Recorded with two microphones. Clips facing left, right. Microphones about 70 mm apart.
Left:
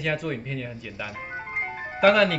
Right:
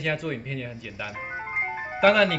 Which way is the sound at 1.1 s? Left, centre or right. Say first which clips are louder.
Right 3 dB; centre.